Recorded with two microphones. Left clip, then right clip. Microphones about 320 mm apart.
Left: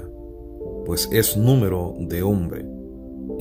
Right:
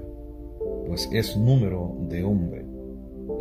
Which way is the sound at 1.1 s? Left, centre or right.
Left.